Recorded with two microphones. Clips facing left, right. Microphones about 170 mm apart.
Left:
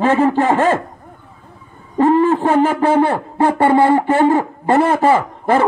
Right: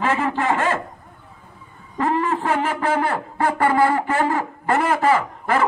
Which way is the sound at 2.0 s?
30° left (ahead or behind).